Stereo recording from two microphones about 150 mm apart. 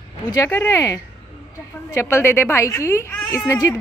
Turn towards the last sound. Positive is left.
turn(degrees=20)  # may be behind; listen again after turning